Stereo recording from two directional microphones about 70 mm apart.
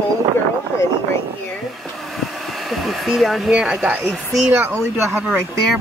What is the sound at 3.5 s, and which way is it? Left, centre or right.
Speech, centre.